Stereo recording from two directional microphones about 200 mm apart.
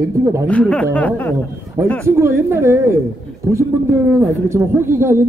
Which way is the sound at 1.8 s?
15° right (ahead or behind).